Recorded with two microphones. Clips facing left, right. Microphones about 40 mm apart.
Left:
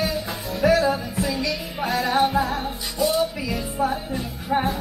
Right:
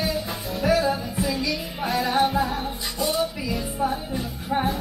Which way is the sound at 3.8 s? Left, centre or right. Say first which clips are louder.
Right 1 dB; centre.